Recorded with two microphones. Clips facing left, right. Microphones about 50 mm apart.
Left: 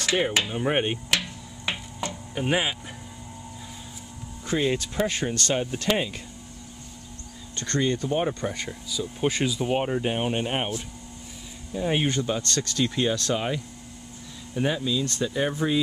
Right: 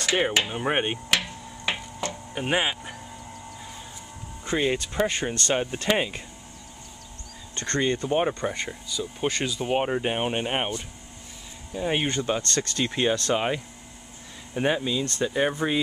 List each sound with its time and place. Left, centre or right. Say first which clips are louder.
0.1 s speech: right 1 dB; centre
2.0 s music: even; centre
2.3 s speech: even; centre
4.5 s speech: even; centre
7.5 s speech: even; centre
8.8 s speech: left 3 dB; centre
11.7 s speech: left 1 dB; centre
12.7 s speech: even; right